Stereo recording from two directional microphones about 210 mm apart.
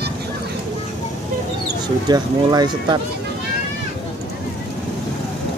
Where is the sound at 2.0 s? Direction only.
20° right (ahead or behind).